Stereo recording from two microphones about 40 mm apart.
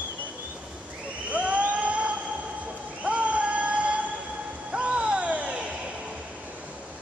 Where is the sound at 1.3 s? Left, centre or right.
Right.